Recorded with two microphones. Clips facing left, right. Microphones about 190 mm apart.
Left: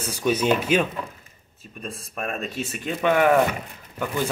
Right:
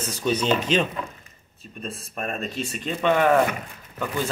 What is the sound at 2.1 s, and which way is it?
Speech, centre (ahead or behind).